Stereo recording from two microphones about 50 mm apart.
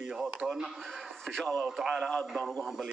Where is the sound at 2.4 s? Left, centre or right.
Left.